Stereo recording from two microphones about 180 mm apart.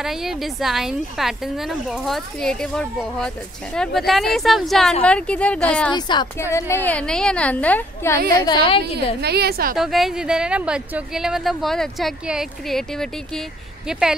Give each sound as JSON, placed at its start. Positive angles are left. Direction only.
{"t": 0.0, "sound": "a woman's voice", "side_deg": 0}
{"t": 5.9, "sound": "a woman's voice", "side_deg": 25}
{"t": 6.5, "sound": "a woman's voice", "side_deg": 10}
{"t": 8.4, "sound": "a woman's voice", "side_deg": 25}
{"t": 8.9, "sound": "a woman's voice", "side_deg": -65}
{"t": 9.8, "sound": "a woman's voice", "side_deg": 0}